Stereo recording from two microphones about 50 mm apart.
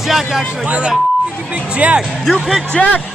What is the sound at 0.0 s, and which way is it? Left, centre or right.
Speech, centre.